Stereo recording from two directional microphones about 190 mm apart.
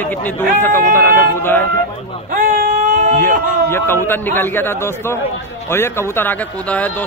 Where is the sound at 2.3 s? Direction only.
45° right (ahead or behind).